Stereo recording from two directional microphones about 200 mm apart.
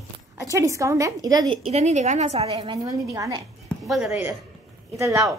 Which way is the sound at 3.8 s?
Centre (ahead or behind).